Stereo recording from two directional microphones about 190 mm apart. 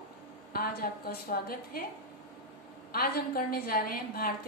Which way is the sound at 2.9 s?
50° left (ahead or behind).